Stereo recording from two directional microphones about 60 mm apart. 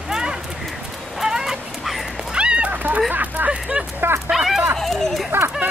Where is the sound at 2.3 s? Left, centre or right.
Centre.